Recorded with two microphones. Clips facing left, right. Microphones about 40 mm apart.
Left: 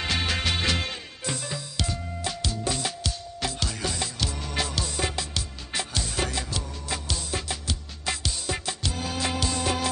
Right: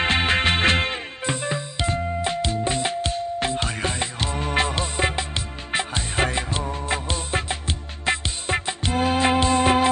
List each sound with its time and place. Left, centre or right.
0.0 s music: right